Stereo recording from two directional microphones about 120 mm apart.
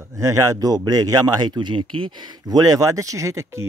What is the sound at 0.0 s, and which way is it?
A man's voice, 25° right (ahead or behind).